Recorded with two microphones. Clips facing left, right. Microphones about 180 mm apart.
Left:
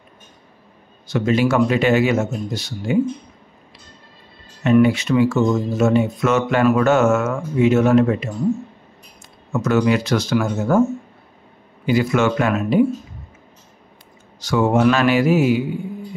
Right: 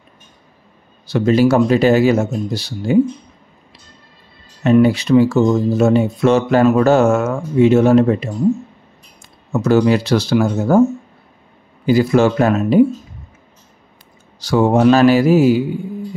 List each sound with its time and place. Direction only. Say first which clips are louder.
1.0 s speech: right 5 dB; 35° right (ahead or behind)
4.8 s speech: right 4 dB; 35° right (ahead or behind)
9.5 s speech: right 4 dB; 30° right (ahead or behind)
11.8 s speech: right 5 dB; 35° right (ahead or behind)
14.4 s speech: right 3 dB; 35° right (ahead or behind)